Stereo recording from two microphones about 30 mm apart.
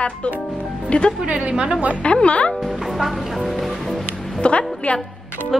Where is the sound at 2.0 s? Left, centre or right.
Left.